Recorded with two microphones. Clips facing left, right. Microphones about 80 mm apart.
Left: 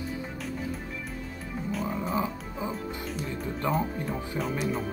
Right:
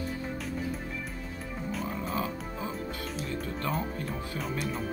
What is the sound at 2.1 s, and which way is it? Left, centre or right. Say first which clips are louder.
Music: left 3 dB; centre.